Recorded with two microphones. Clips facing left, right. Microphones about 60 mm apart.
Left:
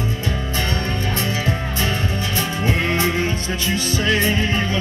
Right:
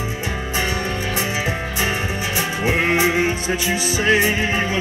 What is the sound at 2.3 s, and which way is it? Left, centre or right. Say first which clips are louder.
Music: right 3 dB; centre.